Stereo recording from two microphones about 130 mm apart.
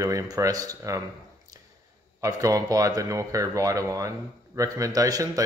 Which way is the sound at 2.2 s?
25° right (ahead or behind).